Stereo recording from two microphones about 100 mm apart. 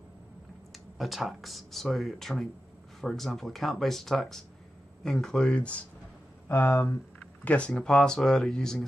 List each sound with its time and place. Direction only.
0.9 s speech: centre (ahead or behind)
6.5 s speech: 25° left (ahead or behind)
7.4 s speech: 10° left (ahead or behind)